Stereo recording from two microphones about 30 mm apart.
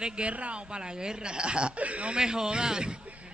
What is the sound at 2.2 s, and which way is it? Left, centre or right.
Speech, right.